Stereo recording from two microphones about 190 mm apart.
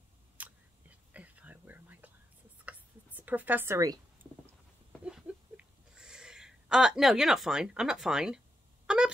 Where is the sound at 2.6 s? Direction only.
10° right (ahead or behind).